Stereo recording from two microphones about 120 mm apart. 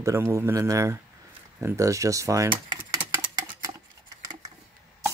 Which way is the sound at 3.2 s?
30° right (ahead or behind).